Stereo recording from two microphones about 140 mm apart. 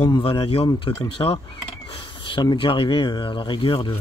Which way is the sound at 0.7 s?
30° left (ahead or behind).